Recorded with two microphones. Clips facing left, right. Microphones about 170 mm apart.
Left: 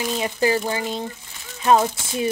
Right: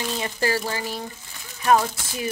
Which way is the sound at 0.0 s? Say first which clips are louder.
Left 4 dB; 15° left (ahead or behind).